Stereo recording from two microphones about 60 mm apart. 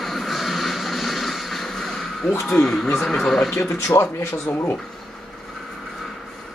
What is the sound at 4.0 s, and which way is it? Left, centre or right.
Speech, left.